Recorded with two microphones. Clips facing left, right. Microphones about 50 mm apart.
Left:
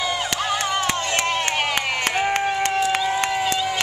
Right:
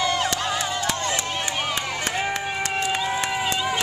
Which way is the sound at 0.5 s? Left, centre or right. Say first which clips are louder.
Left 3 dB; left.